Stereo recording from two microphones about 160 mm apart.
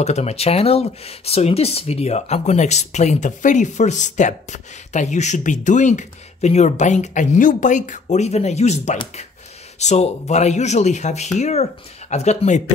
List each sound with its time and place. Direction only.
0.0 s speech: 40° left (ahead or behind)